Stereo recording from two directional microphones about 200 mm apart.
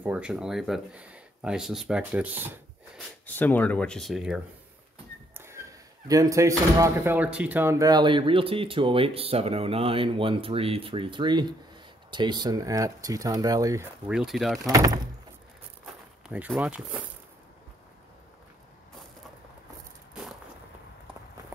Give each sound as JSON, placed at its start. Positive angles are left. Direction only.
{"t": 0.0, "sound": "speech", "side_deg": -5}
{"t": 3.3, "sound": "speech", "side_deg": 10}
{"t": 5.4, "sound": "speech", "side_deg": -15}
{"t": 14.0, "sound": "speech", "side_deg": 0}
{"t": 14.7, "sound": "speech", "side_deg": -15}
{"t": 16.3, "sound": "speech", "side_deg": -5}